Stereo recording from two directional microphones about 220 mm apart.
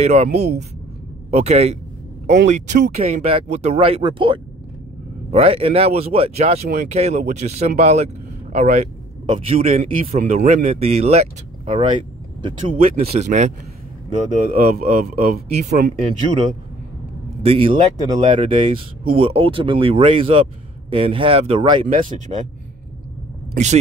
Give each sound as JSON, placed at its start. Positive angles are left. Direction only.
{"t": 0.0, "sound": "speech", "side_deg": -30}
{"t": 14.5, "sound": "speech", "side_deg": -35}
{"t": 17.4, "sound": "speech", "side_deg": -25}
{"t": 23.5, "sound": "speech", "side_deg": -35}